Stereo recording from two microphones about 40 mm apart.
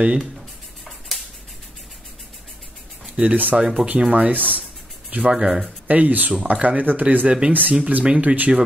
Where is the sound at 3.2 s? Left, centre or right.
Right.